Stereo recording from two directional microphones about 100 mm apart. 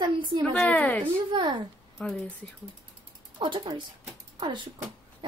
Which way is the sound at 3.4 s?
60° right (ahead or behind).